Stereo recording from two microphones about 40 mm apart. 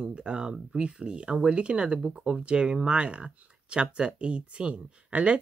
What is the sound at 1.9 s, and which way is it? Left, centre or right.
Speech, centre.